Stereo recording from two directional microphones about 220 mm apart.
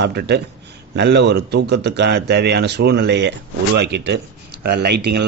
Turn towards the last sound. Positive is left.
turn(degrees=-50)  # may be behind; listen again after turning